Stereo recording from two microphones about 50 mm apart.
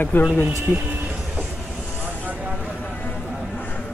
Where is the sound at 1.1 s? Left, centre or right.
Centre.